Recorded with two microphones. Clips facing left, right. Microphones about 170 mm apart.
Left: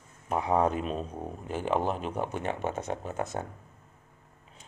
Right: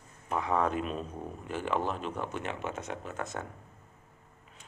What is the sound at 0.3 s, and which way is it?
Speech, 30° left (ahead or behind).